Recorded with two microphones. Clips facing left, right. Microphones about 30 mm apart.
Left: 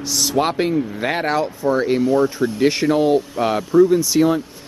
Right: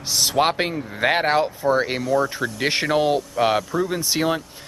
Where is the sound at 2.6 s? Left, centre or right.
Right.